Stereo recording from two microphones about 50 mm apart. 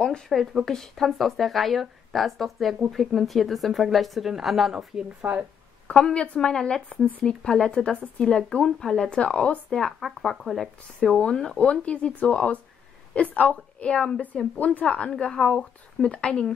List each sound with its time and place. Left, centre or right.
0.3 s speech: centre
5.2 s speech: right
5.9 s a woman's voice: left
6.5 s speech: centre
7.7 s speech: left
9.2 s speech: left; by 10.7 s centre
11.0 s a woman's voice: centre
14.6 s a woman's voice: left